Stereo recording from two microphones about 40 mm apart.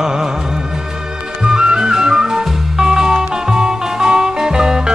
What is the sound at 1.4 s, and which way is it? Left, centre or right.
Music, centre.